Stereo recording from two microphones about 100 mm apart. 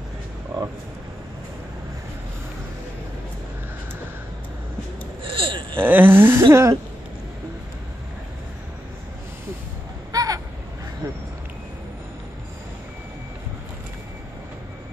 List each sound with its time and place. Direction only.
5.2 s a sound: 60° right (ahead or behind)
5.8 s speech: 20° right (ahead or behind)
10.1 s vehicle: 35° right (ahead or behind)